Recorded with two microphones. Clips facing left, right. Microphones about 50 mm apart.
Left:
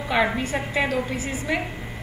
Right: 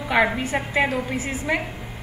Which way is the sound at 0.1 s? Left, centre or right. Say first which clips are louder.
Right 2 dB; centre.